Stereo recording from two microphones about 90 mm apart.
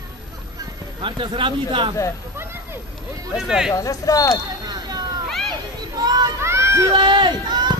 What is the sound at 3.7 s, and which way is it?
Speech, 40° left (ahead or behind).